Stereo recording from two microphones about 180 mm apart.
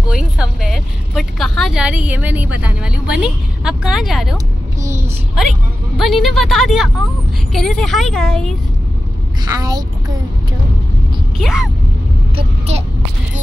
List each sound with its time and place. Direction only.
0.1 s vehicle: 5° right (ahead or behind)
5.9 s a woman's voice: centre (ahead or behind)
9.4 s a child's voice: 20° right (ahead or behind)
11.3 s a woman's voice: 5° right (ahead or behind)
12.4 s speech: 35° right (ahead or behind)